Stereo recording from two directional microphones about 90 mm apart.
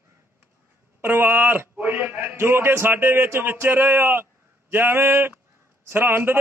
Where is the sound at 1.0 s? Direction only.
25° right (ahead or behind).